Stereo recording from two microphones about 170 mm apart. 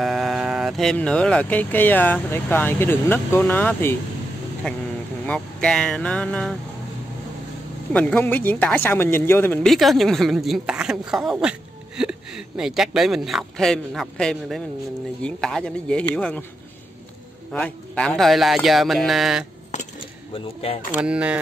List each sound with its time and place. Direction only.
0.0 s speech: centre (ahead or behind)
5.2 s speech: 5° left (ahead or behind)
7.9 s speech: 10° left (ahead or behind)
9.7 s speech: centre (ahead or behind)
17.5 s speech: 5° left (ahead or behind)
20.3 s speech: 35° left (ahead or behind)
21.0 s speech: 5° right (ahead or behind)